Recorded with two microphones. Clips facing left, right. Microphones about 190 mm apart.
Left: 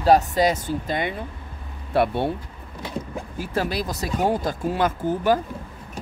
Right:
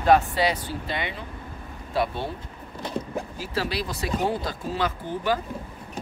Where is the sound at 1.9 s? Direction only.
60° left (ahead or behind).